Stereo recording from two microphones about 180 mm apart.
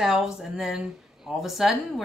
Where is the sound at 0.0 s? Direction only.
Centre (ahead or behind).